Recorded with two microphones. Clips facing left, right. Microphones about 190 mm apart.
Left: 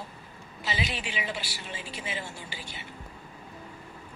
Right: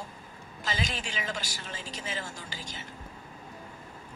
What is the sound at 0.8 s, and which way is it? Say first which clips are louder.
Speech: left 3 dB; 45° right (ahead or behind).